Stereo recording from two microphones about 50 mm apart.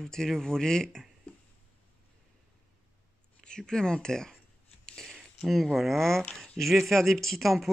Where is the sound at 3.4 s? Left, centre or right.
Centre.